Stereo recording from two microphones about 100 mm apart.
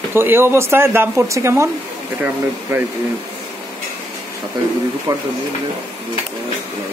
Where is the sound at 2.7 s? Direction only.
25° right (ahead or behind).